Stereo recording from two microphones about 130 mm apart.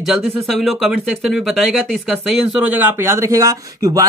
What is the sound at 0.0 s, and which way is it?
Speech, 5° right (ahead or behind).